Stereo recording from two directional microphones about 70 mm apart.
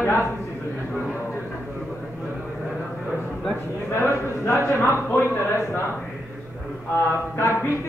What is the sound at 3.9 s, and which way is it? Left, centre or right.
A man's voice, left.